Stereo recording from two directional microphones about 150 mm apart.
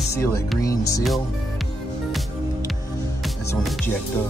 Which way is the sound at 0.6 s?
20° left (ahead or behind).